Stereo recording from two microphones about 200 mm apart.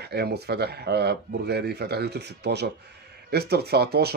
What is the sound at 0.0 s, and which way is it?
Speech, 55° right (ahead or behind).